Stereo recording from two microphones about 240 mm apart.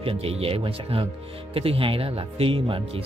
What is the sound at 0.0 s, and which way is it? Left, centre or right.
Speech, right.